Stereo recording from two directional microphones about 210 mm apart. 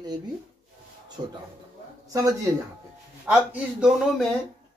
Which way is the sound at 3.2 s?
5° right (ahead or behind).